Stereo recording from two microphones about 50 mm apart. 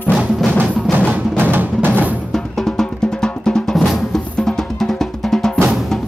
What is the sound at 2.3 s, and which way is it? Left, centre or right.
Drum, centre.